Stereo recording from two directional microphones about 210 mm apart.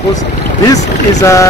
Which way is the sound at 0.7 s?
15° left (ahead or behind).